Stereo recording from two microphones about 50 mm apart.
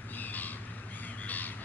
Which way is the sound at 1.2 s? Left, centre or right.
Left.